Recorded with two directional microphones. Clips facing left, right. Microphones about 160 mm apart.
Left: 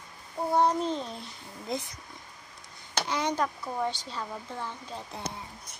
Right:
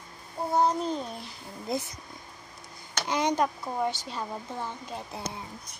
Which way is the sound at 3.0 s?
15° right (ahead or behind).